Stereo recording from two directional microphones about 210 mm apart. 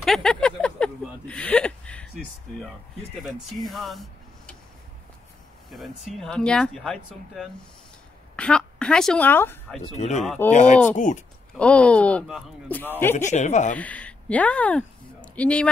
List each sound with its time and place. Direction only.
0.0 s a sound: centre (ahead or behind)
3.6 s speech: centre (ahead or behind)
5.7 s a woman's voice: centre (ahead or behind)
9.8 s speech: 35° left (ahead or behind)
10.2 s speech: centre (ahead or behind)
10.5 s speech: 35° left (ahead or behind)
11.5 s speech: 5° left (ahead or behind)
13.1 s speech: 35° left (ahead or behind)
13.7 s speech: 5° left (ahead or behind)